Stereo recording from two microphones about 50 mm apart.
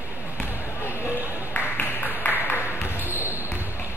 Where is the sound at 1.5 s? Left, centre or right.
Left.